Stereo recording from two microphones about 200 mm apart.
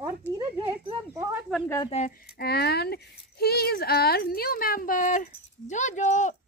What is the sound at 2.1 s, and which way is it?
Speech, 50° left (ahead or behind).